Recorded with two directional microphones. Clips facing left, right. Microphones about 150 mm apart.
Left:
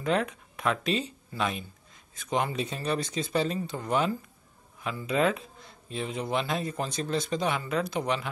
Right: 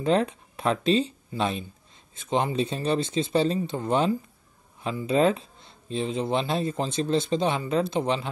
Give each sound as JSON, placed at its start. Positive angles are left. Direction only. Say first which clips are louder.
{"t": 0.0, "sound": "speech", "louder": "right 4 dB", "side_deg": -30}